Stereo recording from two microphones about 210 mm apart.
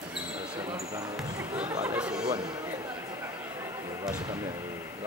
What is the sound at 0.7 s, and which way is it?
Speech, 15° right (ahead or behind).